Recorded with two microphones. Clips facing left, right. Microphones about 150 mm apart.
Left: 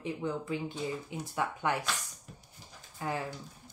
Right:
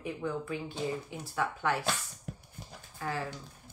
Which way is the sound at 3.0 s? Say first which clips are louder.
Left 1 dB; 20° left (ahead or behind).